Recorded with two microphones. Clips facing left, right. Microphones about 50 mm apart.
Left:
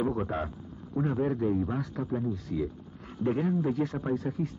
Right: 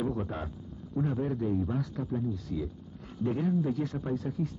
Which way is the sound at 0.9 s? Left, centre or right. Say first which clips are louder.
Left 2 dB; left.